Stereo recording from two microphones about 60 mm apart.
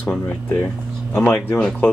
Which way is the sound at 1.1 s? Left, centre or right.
Left.